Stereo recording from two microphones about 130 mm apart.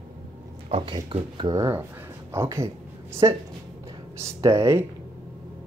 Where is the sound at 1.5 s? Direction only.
25° right (ahead or behind).